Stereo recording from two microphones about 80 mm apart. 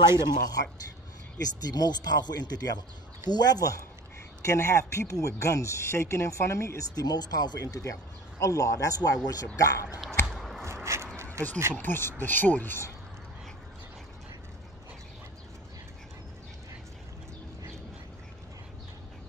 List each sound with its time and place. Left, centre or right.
0.2 s speech: left
4.5 s speech: left
7.0 s speech: left
10.3 s rub: centre
10.6 s a sound: right
11.7 s speech: left